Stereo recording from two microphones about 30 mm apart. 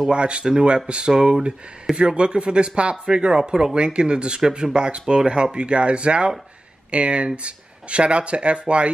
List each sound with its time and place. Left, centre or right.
0.1 s speech: right